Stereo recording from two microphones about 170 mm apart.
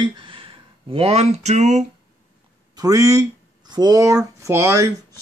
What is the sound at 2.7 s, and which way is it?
Speech, 20° right (ahead or behind).